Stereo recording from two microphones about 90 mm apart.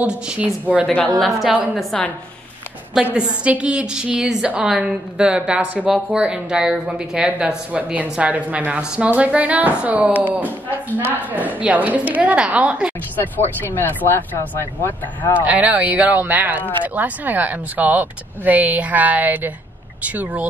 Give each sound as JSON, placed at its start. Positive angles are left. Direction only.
{"t": 0.0, "sound": "speech", "side_deg": -10}
{"t": 0.8, "sound": "a woman's voice", "side_deg": 10}
{"t": 2.9, "sound": "speech", "side_deg": -10}
{"t": 13.1, "sound": "speech", "side_deg": 25}
{"t": 15.4, "sound": "speech", "side_deg": -15}